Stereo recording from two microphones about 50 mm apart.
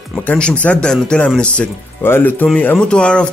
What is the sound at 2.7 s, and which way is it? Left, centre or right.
Speech, centre.